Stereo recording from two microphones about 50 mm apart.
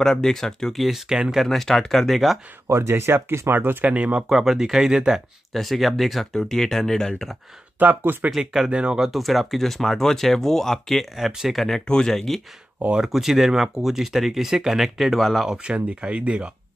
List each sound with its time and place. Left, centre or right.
0.0 s speech: centre
0.8 s speech: centre
1.4 s speech: centre
2.7 s speech: right
3.8 s speech: right
4.3 s speech: centre
5.5 s speech: centre
7.8 s speech: right
8.4 s speech: centre
9.0 s speech: centre
11.1 s speech: centre
13.1 s speech: centre
15.4 s speech: centre